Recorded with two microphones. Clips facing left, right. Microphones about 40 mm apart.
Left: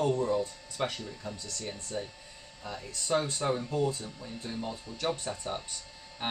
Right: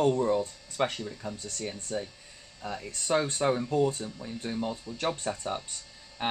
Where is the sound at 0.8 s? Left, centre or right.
Right.